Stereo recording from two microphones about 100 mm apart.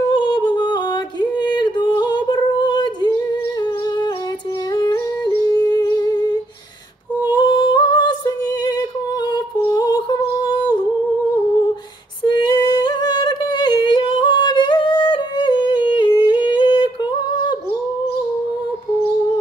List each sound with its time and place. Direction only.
0.1 s a sound: 45° left (ahead or behind)
1.2 s yodeling: 45° left (ahead or behind)
5.5 s humming: 45° left (ahead or behind)
9.7 s gargling: 40° left (ahead or behind)
12.3 s singing: 45° left (ahead or behind)